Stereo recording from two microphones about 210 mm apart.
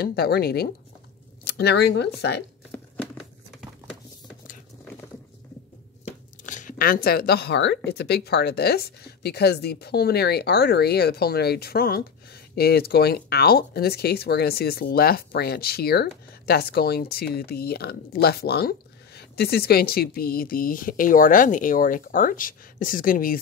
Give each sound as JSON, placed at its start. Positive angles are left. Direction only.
{"t": 0.0, "sound": "speech", "side_deg": 45}
{"t": 6.0, "sound": "speech", "side_deg": 35}